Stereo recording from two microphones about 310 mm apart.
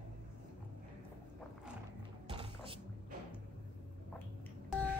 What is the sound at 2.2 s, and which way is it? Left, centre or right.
Music, centre.